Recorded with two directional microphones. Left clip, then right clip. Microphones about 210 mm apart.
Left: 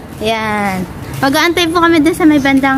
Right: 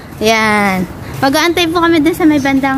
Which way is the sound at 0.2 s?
50° right (ahead or behind).